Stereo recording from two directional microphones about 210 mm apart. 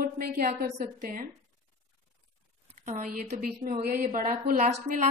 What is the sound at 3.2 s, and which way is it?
A woman's voice, 40° right (ahead or behind).